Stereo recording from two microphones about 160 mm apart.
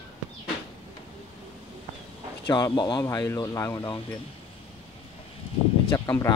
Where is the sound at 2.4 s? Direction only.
25° left (ahead or behind).